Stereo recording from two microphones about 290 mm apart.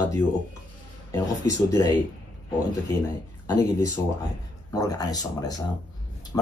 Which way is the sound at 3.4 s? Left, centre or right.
Centre.